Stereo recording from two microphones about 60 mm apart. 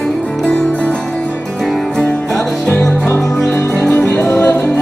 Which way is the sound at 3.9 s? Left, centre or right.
Left.